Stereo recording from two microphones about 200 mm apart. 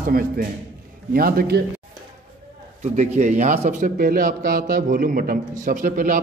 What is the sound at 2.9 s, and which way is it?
A man's voice, 35° right (ahead or behind).